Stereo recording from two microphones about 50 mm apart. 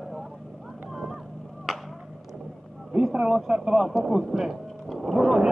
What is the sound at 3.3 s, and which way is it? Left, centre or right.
Speech, centre.